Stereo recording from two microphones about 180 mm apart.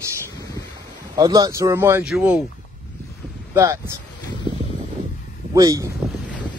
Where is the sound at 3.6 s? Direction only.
15° right (ahead or behind).